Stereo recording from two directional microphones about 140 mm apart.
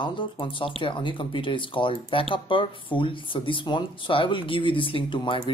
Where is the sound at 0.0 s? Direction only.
35° left (ahead or behind).